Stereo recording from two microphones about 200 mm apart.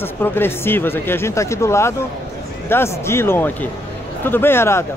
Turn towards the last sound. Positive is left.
turn(degrees=10)  # may be behind; listen again after turning